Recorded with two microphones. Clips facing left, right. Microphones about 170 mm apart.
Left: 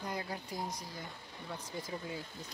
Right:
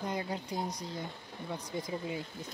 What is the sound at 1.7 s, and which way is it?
Speech, 20° right (ahead or behind).